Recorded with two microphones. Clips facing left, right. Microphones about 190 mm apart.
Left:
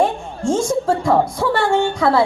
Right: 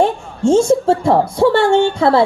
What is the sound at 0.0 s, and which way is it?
A woman's voice, 25° right (ahead or behind).